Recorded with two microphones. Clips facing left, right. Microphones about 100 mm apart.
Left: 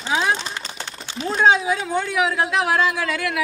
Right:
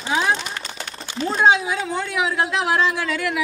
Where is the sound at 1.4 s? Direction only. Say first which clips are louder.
Left 1 dB; centre (ahead or behind).